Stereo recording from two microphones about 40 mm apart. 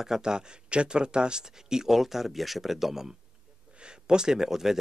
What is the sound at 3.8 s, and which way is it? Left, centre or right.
Speech, right.